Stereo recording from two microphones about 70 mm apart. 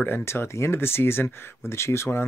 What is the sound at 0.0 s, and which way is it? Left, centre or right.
Speech, left.